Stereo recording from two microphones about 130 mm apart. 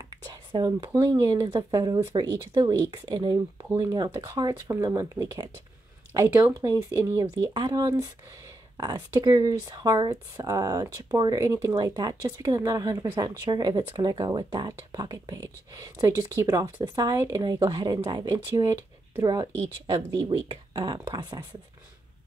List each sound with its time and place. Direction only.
0.1 s a sound: 35° right (ahead or behind)
0.9 s speech: 30° right (ahead or behind)
19.9 s speech: 30° right (ahead or behind)